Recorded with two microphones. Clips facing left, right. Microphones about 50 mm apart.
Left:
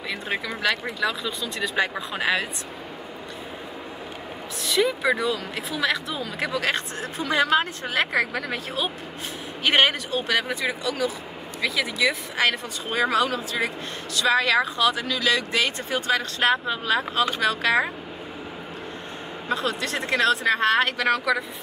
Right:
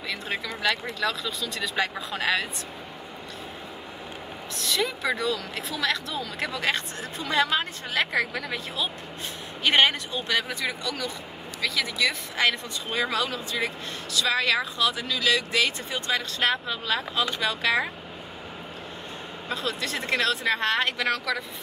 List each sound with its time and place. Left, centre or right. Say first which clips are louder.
0.1 s speech: left 3 dB; left
0.6 s speech: left 1 dB; centre
4.6 s speech: left 5 dB; centre
6.7 s speech: left 2 dB; left
7.2 s a woman's voice: left 3 dB; left
9.8 s speech: left 2 dB; centre
12.9 s speech: left 5 dB; left
14.4 s speech: left 4 dB; centre
15.1 s speech: left 1 dB; centre
16.1 s speech: left 3 dB; left
16.4 s a woman's voice: left 5 dB; left
19.5 s a woman's voice: left 4 dB; left; by 21.5 s centre